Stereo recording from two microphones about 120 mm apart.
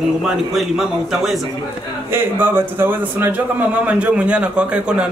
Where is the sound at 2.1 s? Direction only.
20° right (ahead or behind).